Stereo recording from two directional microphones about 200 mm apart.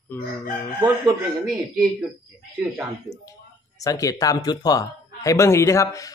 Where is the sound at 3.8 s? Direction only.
15° left (ahead or behind).